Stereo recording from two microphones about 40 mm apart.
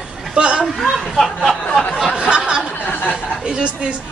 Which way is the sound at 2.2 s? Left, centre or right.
Right.